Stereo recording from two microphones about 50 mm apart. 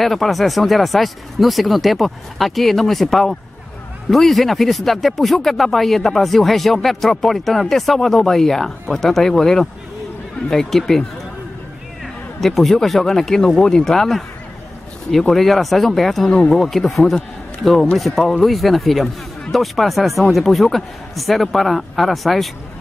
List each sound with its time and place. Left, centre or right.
0.0 s speech: centre
12.4 s speech: centre
16.3 s speech: left
16.5 s speech: centre